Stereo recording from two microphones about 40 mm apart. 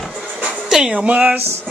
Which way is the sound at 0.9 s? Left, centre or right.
Right.